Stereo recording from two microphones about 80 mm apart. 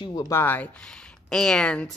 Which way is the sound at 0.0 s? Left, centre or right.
Left.